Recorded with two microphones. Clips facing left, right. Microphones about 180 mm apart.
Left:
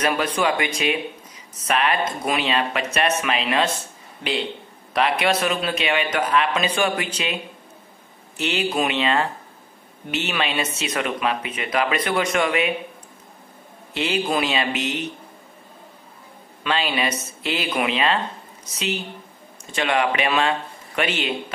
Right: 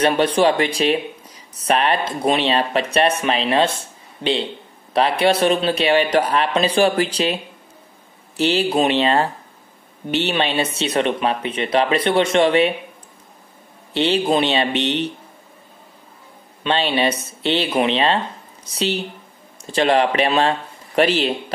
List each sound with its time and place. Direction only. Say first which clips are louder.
0.0 s speech: right 6 dB; 30° right (ahead or behind)
8.4 s speech: right 5 dB; 35° right (ahead or behind)
13.9 s speech: right 5 dB; 30° right (ahead or behind)
16.6 s a man's voice: right 5 dB; 30° right (ahead or behind)